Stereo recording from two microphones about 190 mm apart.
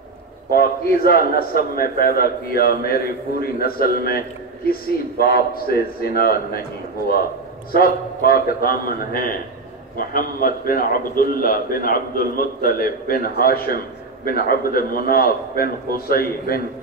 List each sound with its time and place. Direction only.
0.5 s a man's voice: 50° left (ahead or behind)
5.2 s a man's voice: 50° left (ahead or behind)
7.7 s a man's voice: 50° left (ahead or behind)